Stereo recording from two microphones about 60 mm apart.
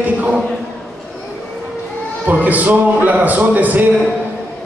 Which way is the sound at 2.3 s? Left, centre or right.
Right.